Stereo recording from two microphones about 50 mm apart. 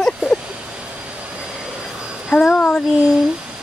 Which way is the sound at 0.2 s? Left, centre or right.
Centre.